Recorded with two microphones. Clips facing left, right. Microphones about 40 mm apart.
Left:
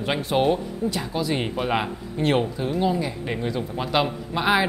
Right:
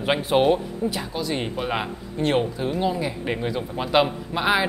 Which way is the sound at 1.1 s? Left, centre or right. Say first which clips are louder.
Left 2 dB; centre.